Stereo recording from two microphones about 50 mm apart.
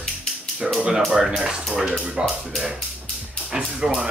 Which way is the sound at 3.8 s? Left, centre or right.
Centre.